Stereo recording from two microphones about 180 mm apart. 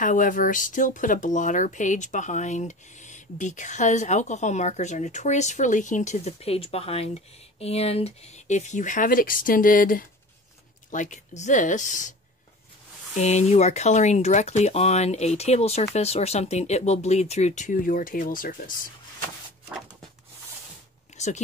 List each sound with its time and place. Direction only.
0.0 s speech: 45° left (ahead or behind)
13.1 s speech: 40° left (ahead or behind)
21.1 s a sound: 40° left (ahead or behind)